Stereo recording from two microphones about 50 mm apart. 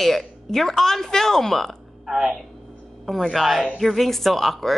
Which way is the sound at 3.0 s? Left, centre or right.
Centre.